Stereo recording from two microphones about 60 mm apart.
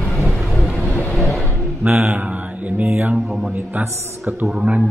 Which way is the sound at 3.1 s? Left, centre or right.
Centre.